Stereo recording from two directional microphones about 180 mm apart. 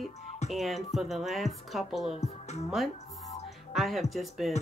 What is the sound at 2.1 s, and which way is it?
Speech, 40° left (ahead or behind).